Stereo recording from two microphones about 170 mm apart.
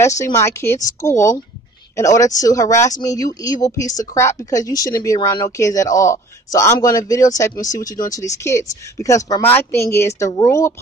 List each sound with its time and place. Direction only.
0.0 s speech: 15° left (ahead or behind)